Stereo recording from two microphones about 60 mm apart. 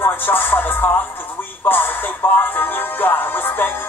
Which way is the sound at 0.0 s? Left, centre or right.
Left.